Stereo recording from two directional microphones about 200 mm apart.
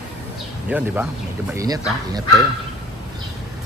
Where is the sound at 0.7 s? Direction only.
5° right (ahead or behind).